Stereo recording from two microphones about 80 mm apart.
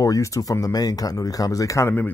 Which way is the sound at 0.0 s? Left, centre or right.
Left.